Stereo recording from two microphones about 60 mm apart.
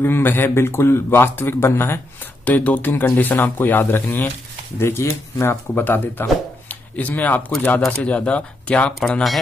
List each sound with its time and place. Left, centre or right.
0.0 s a man's voice: left
2.4 s a man's voice: left
4.7 s speech: left